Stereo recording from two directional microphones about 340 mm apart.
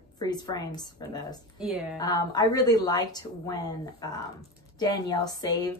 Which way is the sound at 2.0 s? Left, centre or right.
Centre.